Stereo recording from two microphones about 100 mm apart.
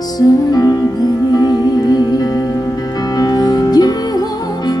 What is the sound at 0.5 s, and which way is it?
Music, 40° left (ahead or behind).